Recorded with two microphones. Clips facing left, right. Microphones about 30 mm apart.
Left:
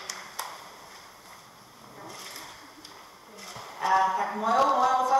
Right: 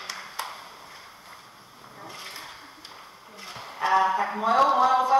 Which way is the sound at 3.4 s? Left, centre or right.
Right.